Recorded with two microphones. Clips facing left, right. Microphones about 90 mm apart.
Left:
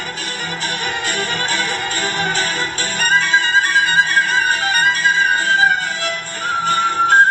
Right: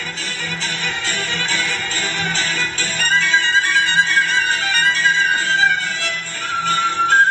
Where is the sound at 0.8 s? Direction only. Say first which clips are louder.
Left 3 dB; 55° left (ahead or behind).